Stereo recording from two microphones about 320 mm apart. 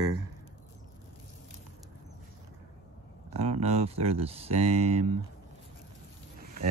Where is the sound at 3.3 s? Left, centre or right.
Centre.